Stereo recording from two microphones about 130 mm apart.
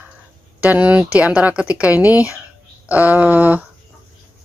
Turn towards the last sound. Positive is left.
turn(degrees=-15)  # may be behind; listen again after turning